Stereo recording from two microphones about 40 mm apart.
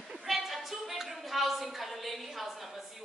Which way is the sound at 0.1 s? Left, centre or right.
Centre.